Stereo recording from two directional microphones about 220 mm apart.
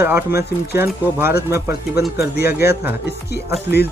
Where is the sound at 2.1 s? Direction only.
45° left (ahead or behind).